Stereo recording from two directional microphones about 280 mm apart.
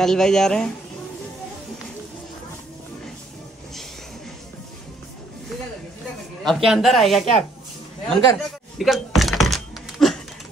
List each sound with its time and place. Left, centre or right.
0.0 s speech: centre
6.4 s speech: centre
8.1 s thunk: centre